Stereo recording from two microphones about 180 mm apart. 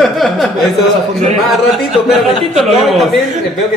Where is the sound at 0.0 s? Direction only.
Centre (ahead or behind).